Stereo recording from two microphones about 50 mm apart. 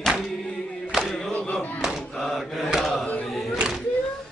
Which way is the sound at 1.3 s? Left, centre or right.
Left.